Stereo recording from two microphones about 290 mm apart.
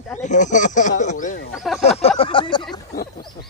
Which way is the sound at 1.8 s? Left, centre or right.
Left.